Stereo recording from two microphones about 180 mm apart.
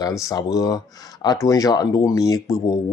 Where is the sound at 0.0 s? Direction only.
20° left (ahead or behind).